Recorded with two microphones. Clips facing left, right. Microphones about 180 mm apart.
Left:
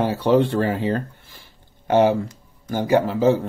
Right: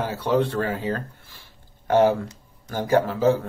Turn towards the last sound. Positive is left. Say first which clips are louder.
# left 2 dB
turn(degrees=20)  # may be behind; listen again after turning